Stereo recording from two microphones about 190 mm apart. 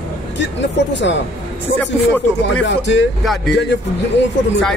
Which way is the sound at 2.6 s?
70° left (ahead or behind).